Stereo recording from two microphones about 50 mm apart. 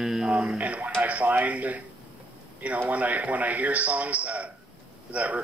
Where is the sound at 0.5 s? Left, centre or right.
Right.